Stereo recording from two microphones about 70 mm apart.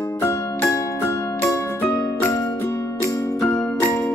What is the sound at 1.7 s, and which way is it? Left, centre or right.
Music, left.